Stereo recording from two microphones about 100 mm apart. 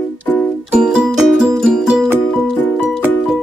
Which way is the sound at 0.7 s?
5° right (ahead or behind).